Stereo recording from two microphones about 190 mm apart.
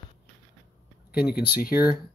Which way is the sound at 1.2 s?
5° right (ahead or behind).